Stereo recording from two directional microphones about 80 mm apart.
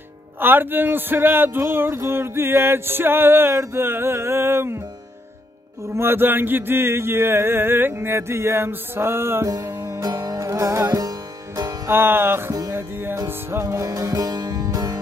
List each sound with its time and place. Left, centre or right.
0.4 s speech: right
5.9 s a sound: right
9.5 s music: right
11.9 s speech: right
12.7 s music: right